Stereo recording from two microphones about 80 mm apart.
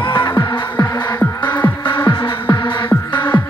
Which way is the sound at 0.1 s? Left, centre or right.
Left.